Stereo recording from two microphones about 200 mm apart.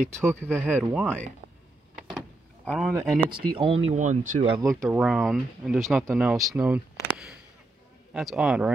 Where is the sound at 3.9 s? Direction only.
40° right (ahead or behind).